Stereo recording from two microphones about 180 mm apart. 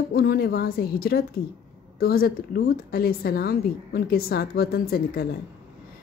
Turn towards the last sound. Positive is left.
turn(degrees=55)  # may be behind; listen again after turning